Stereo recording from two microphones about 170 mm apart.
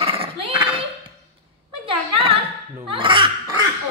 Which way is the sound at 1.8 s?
35° right (ahead or behind).